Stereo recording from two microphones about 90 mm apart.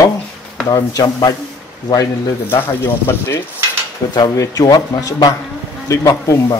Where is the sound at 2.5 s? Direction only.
25° left (ahead or behind).